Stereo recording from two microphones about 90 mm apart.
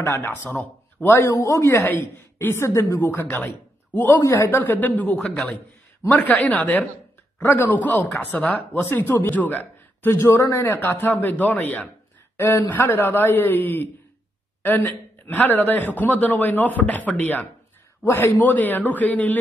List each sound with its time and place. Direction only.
0.0 s a man's voice: 25° left (ahead or behind)
4.2 s speech: 35° left (ahead or behind)
4.6 s a man's voice: 20° left (ahead or behind)
5.2 s a man's voice: 5° left (ahead or behind)
6.4 s a woman's voice: 15° left (ahead or behind)
12.4 s a man's voice: 30° left (ahead or behind)